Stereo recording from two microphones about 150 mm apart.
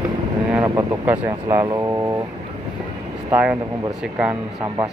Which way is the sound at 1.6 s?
25° right (ahead or behind).